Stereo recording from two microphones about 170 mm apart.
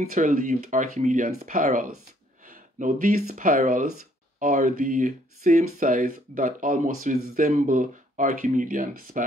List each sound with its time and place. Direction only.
0.0 s speech: 50° right (ahead or behind)